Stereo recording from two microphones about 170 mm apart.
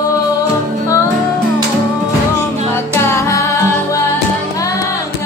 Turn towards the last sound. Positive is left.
turn(degrees=20)  # may be behind; listen again after turning